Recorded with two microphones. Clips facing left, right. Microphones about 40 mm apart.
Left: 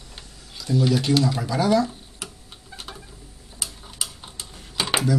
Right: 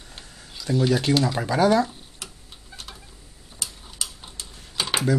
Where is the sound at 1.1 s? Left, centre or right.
Right.